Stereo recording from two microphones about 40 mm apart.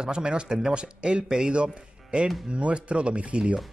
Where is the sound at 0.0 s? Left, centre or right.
Right.